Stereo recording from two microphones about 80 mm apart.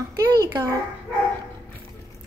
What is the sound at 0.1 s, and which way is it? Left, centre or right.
Speech, right.